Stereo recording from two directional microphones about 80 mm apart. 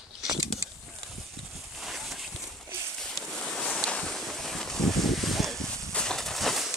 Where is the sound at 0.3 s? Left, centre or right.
Right.